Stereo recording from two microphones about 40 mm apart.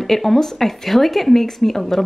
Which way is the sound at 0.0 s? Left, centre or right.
Centre.